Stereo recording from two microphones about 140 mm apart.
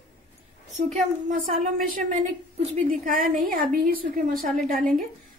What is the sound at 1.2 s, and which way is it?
A woman's voice, 75° right (ahead or behind).